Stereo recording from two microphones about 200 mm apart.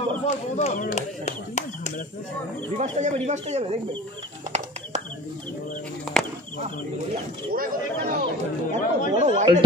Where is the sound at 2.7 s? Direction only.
35° right (ahead or behind).